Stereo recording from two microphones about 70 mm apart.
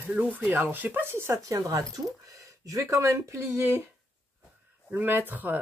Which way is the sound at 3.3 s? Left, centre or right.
Right.